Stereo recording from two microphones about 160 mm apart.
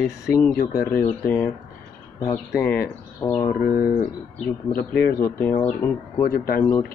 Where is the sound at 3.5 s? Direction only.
65° left (ahead or behind).